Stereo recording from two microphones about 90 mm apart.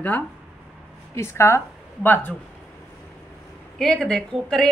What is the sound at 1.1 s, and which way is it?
Speech, 30° left (ahead or behind).